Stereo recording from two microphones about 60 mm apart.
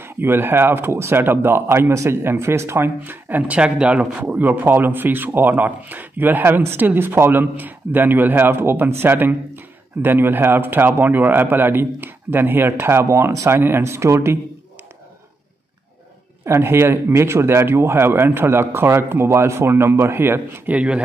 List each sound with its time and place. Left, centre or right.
0.0 s a man's voice: right
3.0 s a man's voice: right
13.5 s speech: right
16.4 s speech: right
20.6 s speech: right